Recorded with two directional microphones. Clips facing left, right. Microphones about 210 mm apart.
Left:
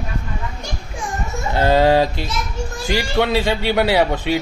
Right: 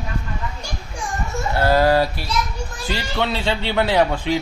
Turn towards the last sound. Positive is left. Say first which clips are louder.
# left 1 dB
turn(degrees=10)  # may be behind; listen again after turning